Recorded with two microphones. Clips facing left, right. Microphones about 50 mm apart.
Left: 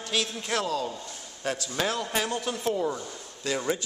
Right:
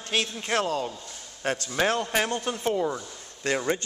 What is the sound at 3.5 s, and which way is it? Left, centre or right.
Speech, right.